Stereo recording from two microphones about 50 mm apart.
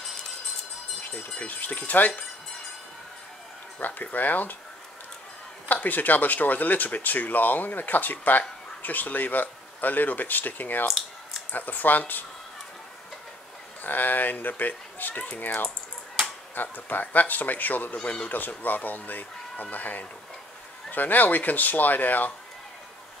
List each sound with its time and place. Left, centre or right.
1.0 s speech: left
3.8 s speech: left
5.7 s speech: left
10.9 s a sound: centre
11.5 s speech: left
13.8 s speech: left
17.9 s speech: left